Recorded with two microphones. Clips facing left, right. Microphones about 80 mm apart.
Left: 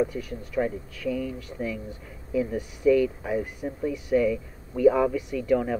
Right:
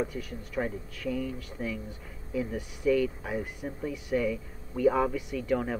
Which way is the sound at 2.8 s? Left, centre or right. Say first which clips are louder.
Left 5 dB; centre.